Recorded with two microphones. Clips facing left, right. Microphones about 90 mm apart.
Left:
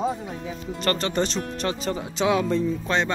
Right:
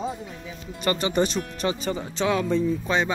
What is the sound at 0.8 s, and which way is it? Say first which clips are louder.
Speech: right 1 dB; 10° right (ahead or behind).